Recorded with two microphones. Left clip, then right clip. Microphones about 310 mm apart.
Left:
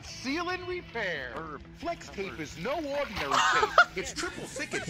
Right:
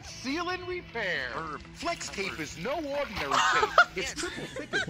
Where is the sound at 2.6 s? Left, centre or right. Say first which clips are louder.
Left 1 dB; centre.